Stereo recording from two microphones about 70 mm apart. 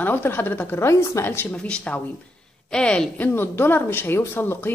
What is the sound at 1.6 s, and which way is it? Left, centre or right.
A woman's voice, centre.